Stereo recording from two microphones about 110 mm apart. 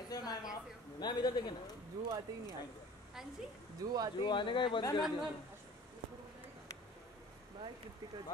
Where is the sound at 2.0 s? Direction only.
35° right (ahead or behind).